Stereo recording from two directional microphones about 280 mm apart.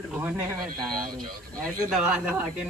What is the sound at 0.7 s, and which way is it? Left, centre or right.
Speech, right.